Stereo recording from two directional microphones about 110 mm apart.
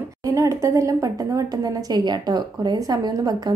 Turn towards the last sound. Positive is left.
turn(degrees=-35)  # may be behind; listen again after turning